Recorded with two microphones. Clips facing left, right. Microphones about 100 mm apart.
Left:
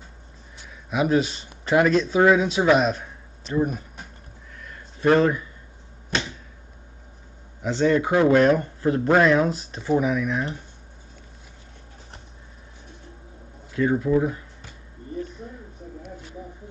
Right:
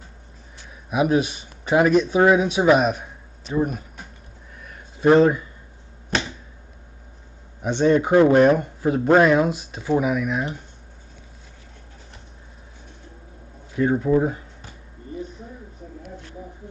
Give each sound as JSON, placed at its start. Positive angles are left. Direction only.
{"t": 0.8, "sound": "a man's voice", "side_deg": -10}
{"t": 4.6, "sound": "a sound", "side_deg": -15}
{"t": 7.6, "sound": "speech", "side_deg": -20}
{"t": 13.7, "sound": "speech", "side_deg": -25}